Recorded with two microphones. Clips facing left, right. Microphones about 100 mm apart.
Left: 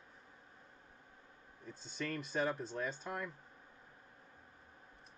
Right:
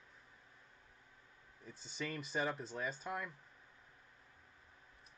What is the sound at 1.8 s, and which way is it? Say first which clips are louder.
Speech: left 2 dB; 5° right (ahead or behind).